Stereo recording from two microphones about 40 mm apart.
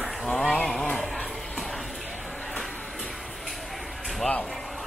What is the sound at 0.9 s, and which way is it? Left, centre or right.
Music, centre.